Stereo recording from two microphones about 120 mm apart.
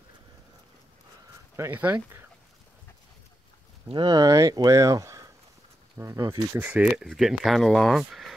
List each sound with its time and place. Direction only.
1.6 s speech: 15° right (ahead or behind)
3.9 s speech: 45° right (ahead or behind)
4.2 s speech: 30° right (ahead or behind)
6.5 s speech: 15° right (ahead or behind)
6.9 s speech: centre (ahead or behind)